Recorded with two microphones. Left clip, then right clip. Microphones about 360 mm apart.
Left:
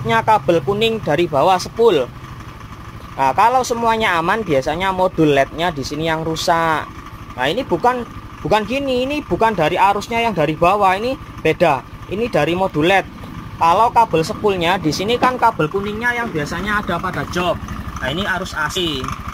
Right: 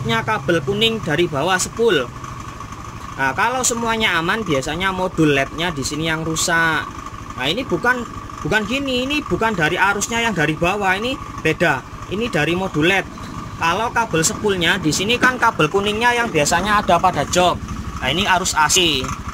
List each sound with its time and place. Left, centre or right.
0.0 s speech: centre
3.2 s speech: centre
13.6 s speech: centre